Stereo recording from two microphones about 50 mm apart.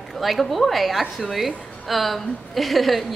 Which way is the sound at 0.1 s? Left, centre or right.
Centre.